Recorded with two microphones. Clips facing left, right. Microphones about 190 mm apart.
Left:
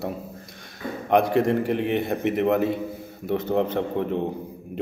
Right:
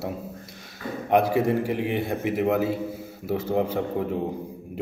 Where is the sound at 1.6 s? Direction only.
65° left (ahead or behind).